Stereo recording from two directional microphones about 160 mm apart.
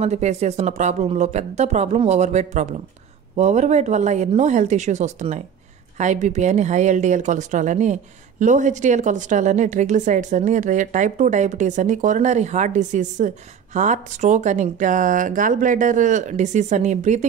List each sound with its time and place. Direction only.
0.0 s speech: 45° right (ahead or behind)